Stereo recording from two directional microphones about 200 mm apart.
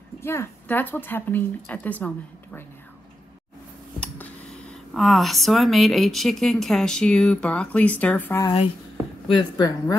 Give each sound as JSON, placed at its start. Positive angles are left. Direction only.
{"t": 0.2, "sound": "a woman's voice", "side_deg": 10}
{"t": 4.0, "sound": "speech", "side_deg": 5}
{"t": 9.3, "sound": "a woman's voice", "side_deg": 20}